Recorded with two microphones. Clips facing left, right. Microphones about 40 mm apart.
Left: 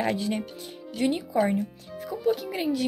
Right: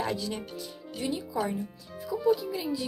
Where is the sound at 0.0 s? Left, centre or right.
Left.